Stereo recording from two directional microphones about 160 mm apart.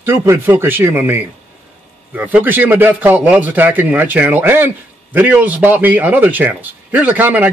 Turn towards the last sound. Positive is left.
turn(degrees=-10)  # may be behind; listen again after turning